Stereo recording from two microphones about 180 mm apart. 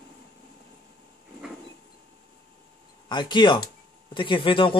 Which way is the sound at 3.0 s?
25° left (ahead or behind).